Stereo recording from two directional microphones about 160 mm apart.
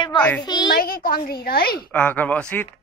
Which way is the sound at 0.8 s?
65° left (ahead or behind).